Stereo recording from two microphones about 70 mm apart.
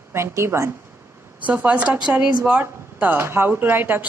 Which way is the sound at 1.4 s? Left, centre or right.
Right.